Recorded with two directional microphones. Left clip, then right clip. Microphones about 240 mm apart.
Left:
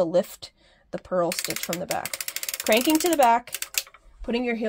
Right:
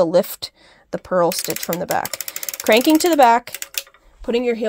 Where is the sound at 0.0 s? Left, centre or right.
Right.